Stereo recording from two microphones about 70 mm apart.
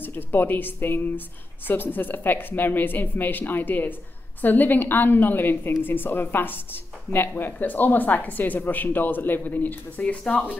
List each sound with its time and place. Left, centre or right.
0.0 s speech: left